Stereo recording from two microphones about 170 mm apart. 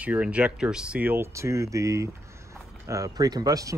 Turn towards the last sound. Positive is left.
turn(degrees=-20)  # may be behind; listen again after turning